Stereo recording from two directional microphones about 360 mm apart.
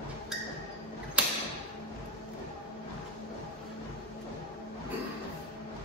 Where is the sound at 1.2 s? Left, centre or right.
Centre.